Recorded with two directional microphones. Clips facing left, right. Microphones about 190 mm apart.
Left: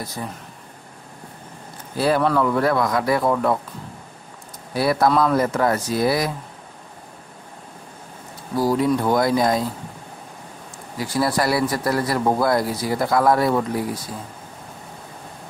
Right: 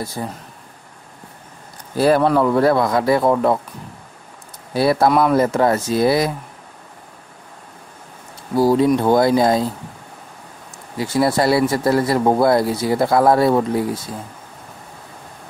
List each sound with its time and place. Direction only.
0.2 s speech: 35° right (ahead or behind)
2.0 s speech: 45° right (ahead or behind)
2.2 s speech: 30° right (ahead or behind)
4.7 s speech: 30° right (ahead or behind)
8.5 s speech: 25° right (ahead or behind)
11.0 s speech: 25° right (ahead or behind)